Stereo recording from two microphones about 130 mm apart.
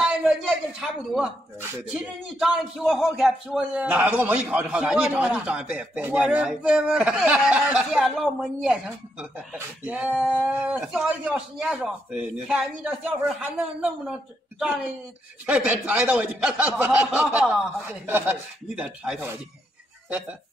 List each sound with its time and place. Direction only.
0.0 s a sound: 5° right (ahead or behind)
1.9 s a man's voice: 5° right (ahead or behind)
15.4 s speech: 10° right (ahead or behind)
18.8 s speech: 5° right (ahead or behind)